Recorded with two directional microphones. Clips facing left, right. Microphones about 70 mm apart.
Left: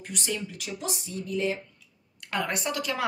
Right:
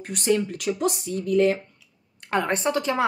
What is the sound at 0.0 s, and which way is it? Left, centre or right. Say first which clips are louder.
Speech: right 10 dB; right.